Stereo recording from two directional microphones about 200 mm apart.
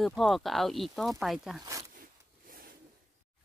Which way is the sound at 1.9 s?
45° right (ahead or behind).